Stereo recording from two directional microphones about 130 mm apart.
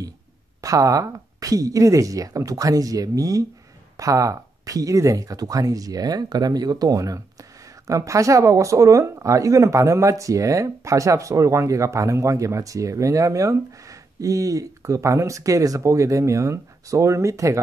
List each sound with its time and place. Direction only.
0.6 s speech: 25° right (ahead or behind)